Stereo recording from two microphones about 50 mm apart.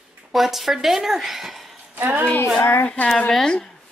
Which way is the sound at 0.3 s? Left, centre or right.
Centre.